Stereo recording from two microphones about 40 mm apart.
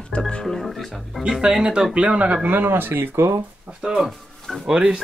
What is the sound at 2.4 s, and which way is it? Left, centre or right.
Speech, right.